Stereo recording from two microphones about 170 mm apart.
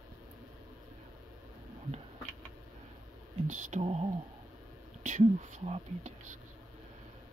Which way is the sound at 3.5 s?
40° right (ahead or behind).